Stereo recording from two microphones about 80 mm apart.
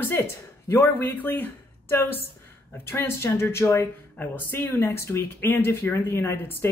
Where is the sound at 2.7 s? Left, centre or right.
Left.